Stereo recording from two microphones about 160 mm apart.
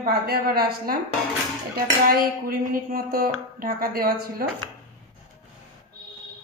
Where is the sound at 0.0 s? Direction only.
70° right (ahead or behind).